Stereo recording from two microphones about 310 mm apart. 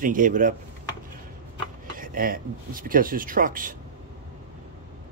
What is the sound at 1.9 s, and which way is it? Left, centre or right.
Speech, right.